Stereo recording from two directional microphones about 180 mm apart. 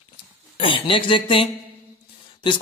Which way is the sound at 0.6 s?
30° left (ahead or behind).